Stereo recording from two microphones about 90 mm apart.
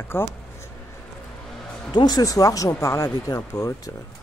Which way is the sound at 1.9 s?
50° left (ahead or behind).